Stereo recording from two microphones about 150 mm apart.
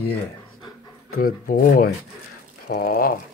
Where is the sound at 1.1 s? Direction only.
70° left (ahead or behind).